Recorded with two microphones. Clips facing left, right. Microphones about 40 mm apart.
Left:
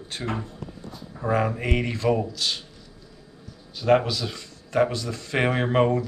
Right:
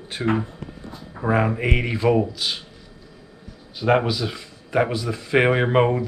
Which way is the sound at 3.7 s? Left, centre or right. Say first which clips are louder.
Right 1 dB; centre.